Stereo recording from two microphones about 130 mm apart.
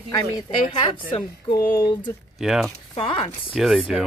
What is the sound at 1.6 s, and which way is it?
Speech, 20° left (ahead or behind).